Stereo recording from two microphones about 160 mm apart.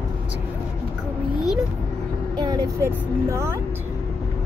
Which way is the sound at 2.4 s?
25° right (ahead or behind).